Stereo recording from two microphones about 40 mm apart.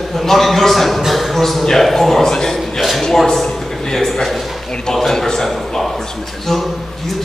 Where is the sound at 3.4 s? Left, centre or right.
Centre.